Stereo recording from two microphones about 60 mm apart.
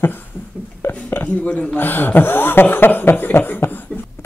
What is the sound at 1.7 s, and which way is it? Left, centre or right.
Speech, left.